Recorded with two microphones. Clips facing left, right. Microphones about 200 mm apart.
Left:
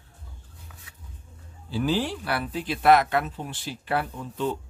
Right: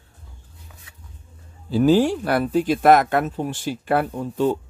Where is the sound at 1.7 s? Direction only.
45° right (ahead or behind).